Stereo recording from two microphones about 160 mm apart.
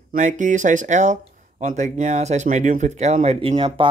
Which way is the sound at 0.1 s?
50° right (ahead or behind).